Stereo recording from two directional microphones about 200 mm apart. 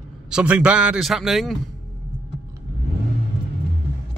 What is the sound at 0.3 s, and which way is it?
A man's voice, 5° right (ahead or behind).